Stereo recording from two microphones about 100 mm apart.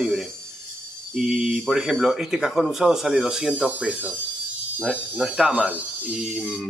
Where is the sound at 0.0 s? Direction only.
Centre (ahead or behind).